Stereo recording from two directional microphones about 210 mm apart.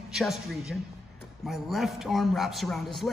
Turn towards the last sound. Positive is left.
turn(degrees=0)  # may be behind; listen again after turning